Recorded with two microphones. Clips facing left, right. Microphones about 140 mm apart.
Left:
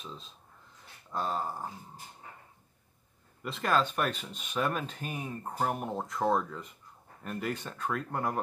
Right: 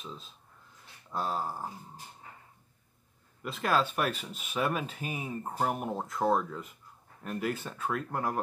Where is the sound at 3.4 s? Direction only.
Centre (ahead or behind).